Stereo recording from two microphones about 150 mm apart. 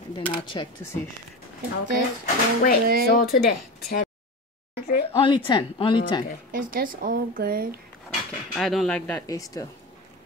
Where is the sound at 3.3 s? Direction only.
85° left.